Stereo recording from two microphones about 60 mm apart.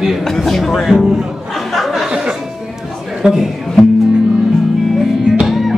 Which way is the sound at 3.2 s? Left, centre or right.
Centre.